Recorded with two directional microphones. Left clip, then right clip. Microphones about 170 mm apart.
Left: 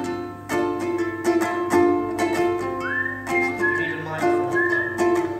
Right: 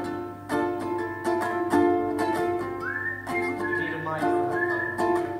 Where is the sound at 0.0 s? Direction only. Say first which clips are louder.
Left 4 dB; 40° left (ahead or behind).